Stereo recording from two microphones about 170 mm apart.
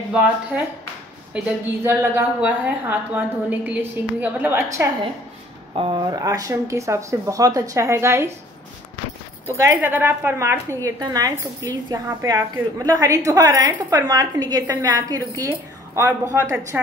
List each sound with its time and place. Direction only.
1.3 s a woman's voice: 15° right (ahead or behind)
5.8 s a woman's voice: 30° right (ahead or behind)
9.5 s a woman's voice: 15° right (ahead or behind)